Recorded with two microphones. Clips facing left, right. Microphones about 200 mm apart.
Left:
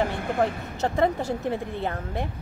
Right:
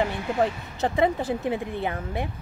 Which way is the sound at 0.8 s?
15° right (ahead or behind).